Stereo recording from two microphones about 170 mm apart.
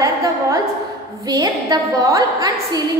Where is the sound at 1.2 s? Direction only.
20° right (ahead or behind).